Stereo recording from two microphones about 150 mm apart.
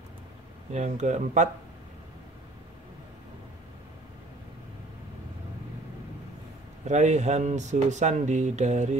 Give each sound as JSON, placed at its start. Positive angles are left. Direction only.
{"t": 0.7, "sound": "speech", "side_deg": -50}
{"t": 6.9, "sound": "speech", "side_deg": -50}